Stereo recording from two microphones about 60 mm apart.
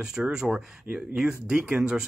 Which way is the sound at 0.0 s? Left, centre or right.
Centre.